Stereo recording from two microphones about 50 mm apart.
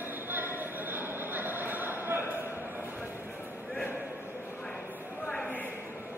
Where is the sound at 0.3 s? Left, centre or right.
Right.